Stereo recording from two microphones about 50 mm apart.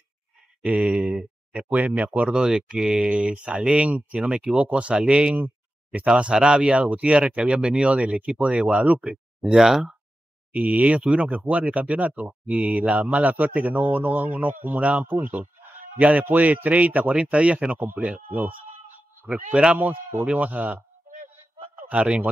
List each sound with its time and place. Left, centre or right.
0.7 s speech: right
2.3 s speech: centre
5.3 s a sound: right
6.0 s speech: centre
9.4 s speech: centre
10.5 s a man's voice: right
21.8 s speech: right